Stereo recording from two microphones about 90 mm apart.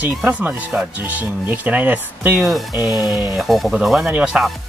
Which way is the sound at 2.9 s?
45° left (ahead or behind).